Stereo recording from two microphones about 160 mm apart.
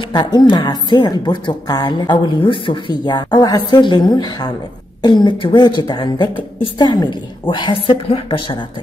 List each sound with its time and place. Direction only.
0.0 s a woman's voice: 25° left (ahead or behind)